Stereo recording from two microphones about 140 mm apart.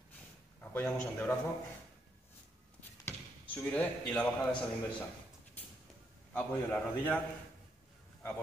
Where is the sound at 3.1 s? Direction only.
10° left (ahead or behind).